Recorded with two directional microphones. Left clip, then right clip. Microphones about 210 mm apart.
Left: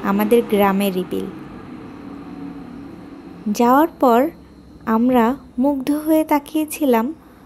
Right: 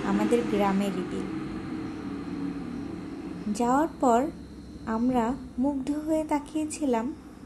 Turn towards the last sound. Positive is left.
turn(degrees=40)  # may be behind; listen again after turning